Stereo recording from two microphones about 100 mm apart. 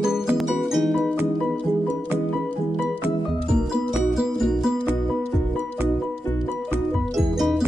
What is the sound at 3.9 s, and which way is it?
Music, 5° right (ahead or behind).